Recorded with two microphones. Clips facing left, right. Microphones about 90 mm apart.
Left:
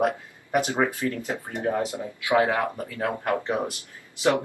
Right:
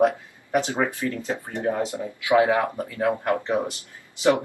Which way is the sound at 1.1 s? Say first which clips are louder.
Right 2 dB; 20° right (ahead or behind).